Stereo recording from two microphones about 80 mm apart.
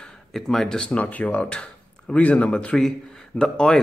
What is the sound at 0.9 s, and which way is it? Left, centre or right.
A man's voice, centre.